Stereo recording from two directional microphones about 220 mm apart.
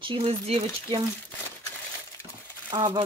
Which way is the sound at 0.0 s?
25° right (ahead or behind).